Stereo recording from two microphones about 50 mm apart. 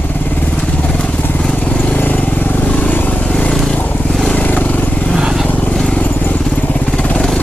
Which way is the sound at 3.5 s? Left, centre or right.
Centre.